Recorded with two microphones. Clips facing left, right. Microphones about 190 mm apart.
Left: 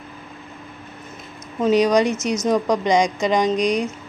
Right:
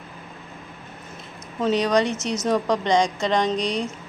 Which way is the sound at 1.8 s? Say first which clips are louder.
Left 4 dB; 15° left (ahead or behind).